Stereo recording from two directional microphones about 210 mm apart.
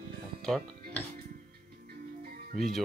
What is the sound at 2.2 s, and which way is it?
Music, 40° right (ahead or behind).